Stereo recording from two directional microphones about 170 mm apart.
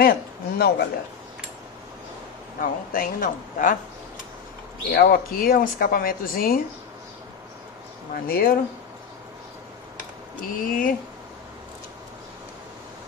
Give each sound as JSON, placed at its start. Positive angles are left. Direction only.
{"t": 0.0, "sound": "a sound", "side_deg": 65}
{"t": 2.6, "sound": "speech", "side_deg": 55}
{"t": 4.9, "sound": "speech", "side_deg": 60}
{"t": 8.1, "sound": "speech", "side_deg": 60}
{"t": 10.4, "sound": "speech", "side_deg": 55}